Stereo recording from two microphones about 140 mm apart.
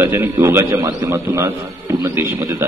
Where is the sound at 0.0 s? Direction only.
20° right (ahead or behind).